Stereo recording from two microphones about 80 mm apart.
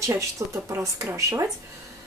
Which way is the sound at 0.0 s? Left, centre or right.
Right.